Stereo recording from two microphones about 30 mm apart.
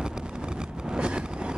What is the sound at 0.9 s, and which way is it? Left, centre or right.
Vehicle, right.